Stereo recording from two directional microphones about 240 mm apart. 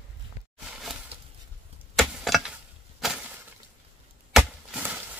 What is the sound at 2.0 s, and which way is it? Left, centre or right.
Chop, centre.